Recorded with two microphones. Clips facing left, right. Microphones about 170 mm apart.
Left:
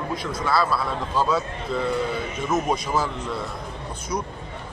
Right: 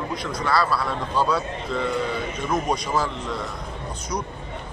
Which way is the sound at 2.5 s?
5° left (ahead or behind).